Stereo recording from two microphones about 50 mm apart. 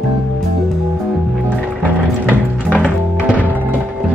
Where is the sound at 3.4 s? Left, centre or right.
Right.